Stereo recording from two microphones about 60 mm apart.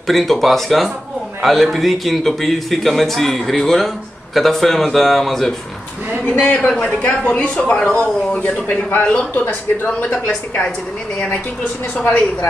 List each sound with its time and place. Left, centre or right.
0.0 s a man's voice: centre
6.6 s speech: centre
12.0 s speech: left